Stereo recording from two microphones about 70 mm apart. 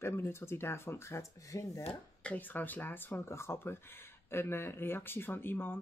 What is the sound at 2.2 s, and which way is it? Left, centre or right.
Speech, left.